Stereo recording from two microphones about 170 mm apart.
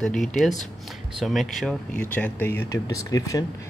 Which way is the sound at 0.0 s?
5° left (ahead or behind).